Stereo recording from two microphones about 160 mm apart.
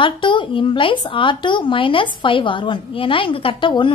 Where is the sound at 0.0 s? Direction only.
30° left (ahead or behind).